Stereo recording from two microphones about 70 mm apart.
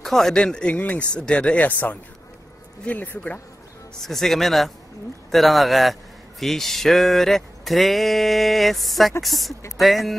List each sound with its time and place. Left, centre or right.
0.0 s speech: centre; by 3.3 s left
4.0 s speech: centre